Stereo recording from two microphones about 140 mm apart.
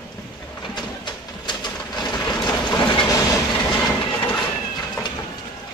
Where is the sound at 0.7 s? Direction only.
30° left (ahead or behind).